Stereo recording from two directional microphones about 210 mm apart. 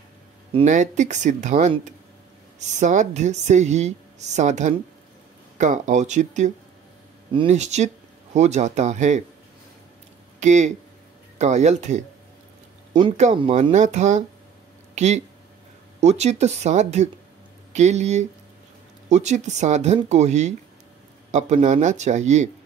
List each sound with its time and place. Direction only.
0.5 s a woman's voice: 30° right (ahead or behind)
10.4 s a woman's voice: 35° right (ahead or behind)
13.0 s a woman's voice: 25° right (ahead or behind)